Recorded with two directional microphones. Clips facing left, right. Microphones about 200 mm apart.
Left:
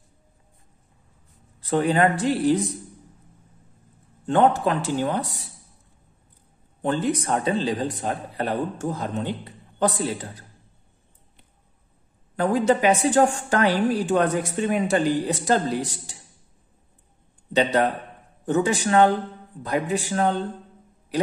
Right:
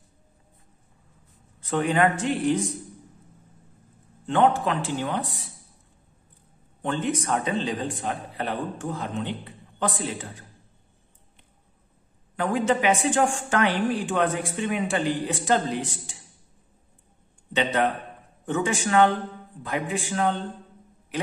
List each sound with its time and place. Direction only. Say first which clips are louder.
1.6 s speech: left 2 dB; 35° left (ahead or behind)
4.3 s speech: left 2 dB; 40° left (ahead or behind)
6.8 s speech: left 3 dB; 35° left (ahead or behind)
12.4 s speech: left 3 dB; 40° left (ahead or behind)
17.5 s speech: left 3 dB; 40° left (ahead or behind)